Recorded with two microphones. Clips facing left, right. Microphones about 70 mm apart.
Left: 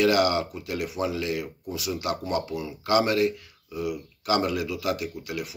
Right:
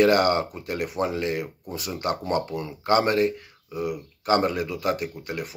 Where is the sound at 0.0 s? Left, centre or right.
Right.